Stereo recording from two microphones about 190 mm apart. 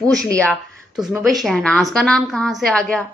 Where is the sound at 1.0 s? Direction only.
20° right (ahead or behind).